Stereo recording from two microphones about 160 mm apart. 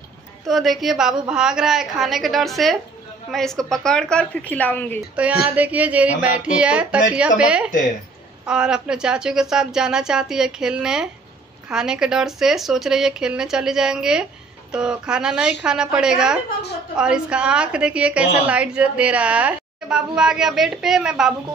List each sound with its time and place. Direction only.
0.5 s a woman's voice: centre (ahead or behind)
5.5 s a woman's voice: 10° right (ahead or behind)